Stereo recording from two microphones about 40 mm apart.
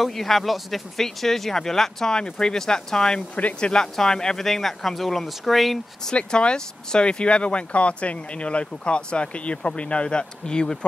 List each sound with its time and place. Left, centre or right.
0.0 s speech: centre
4.5 s speech: centre
6.1 s speech: left